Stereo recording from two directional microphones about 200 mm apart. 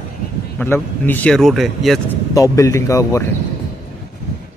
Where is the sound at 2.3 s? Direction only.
15° left (ahead or behind).